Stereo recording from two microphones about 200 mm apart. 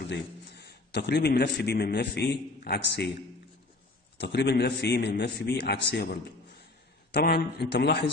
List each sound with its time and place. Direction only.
0.6 s a man's voice: 55° left (ahead or behind)
4.2 s a man's voice: 60° left (ahead or behind)